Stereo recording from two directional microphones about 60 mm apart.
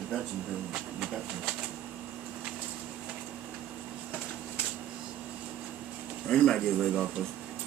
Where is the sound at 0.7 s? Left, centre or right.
Centre.